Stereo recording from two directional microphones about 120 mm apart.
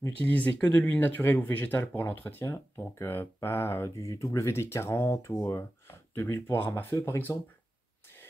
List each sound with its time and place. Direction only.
0.0 s speech: 15° left (ahead or behind)